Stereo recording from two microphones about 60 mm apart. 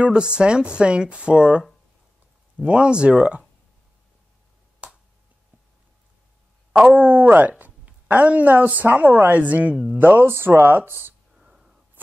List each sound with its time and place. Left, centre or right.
0.0 s speech: centre
2.6 s speech: centre
4.8 s finger snapping: centre
6.7 s a sound: centre
7.0 s speech: right
11.3 s wheeze: centre